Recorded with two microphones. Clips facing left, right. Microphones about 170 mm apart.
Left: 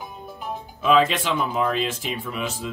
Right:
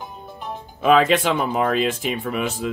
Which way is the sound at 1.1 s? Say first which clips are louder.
Right 5 dB; 55° right (ahead or behind).